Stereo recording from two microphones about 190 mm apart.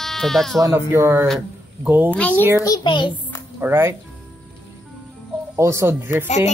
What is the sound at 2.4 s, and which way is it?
Speech, 10° right (ahead or behind).